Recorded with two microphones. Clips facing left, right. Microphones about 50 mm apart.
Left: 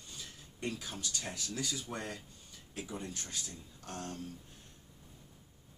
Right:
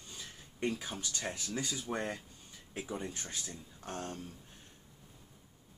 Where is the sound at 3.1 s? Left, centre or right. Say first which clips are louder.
Right 1 dB; right.